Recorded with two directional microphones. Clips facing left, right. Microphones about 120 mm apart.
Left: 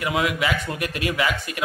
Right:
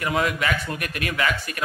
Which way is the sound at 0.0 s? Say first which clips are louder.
Even; 10° left (ahead or behind).